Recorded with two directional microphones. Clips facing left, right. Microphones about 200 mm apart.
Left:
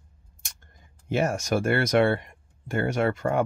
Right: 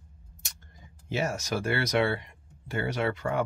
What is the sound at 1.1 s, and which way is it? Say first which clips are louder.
Speech: left 5 dB; 50° left (ahead or behind).